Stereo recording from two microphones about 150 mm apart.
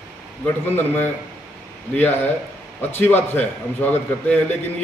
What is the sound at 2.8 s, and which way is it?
A man's voice, 10° left (ahead or behind).